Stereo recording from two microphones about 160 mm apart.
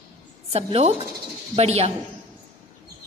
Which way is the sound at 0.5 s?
40° right (ahead or behind).